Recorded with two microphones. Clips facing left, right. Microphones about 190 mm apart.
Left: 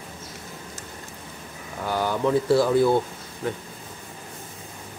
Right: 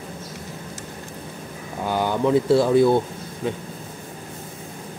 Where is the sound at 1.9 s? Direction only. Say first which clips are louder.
Right 3 dB; 20° right (ahead or behind).